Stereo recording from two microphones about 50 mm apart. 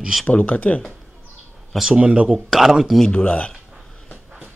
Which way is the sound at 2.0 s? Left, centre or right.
Right.